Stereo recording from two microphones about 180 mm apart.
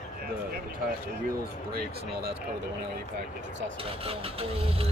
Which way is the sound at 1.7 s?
60° right (ahead or behind).